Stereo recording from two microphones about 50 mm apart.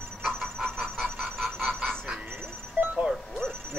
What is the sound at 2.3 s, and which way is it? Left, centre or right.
Music, right.